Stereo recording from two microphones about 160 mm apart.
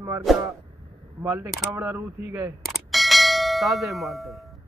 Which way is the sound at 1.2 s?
15° right (ahead or behind).